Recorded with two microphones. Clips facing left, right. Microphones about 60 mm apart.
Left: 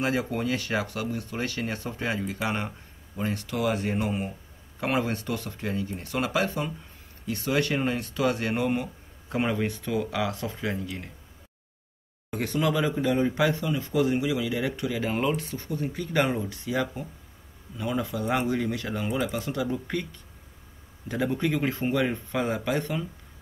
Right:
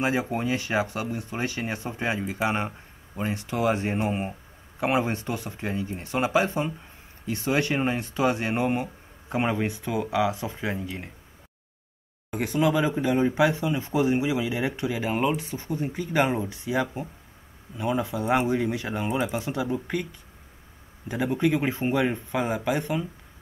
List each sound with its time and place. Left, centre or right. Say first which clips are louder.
0.0 s speech: right 1 dB; right
12.3 s speech: right 3 dB; centre